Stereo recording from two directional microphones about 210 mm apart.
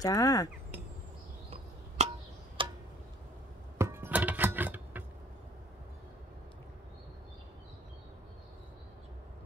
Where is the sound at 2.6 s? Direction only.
25° right (ahead or behind).